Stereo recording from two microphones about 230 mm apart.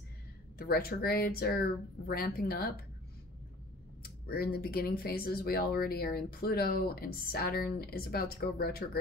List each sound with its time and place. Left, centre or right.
0.6 s speech: left
4.0 s speech: left